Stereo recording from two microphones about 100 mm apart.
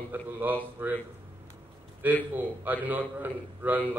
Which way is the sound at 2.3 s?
20° right (ahead or behind).